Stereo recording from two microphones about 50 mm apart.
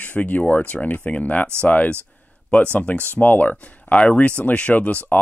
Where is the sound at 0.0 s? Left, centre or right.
Left.